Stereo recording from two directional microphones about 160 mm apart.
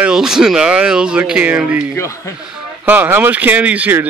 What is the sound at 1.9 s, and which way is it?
Speech, 20° left (ahead or behind).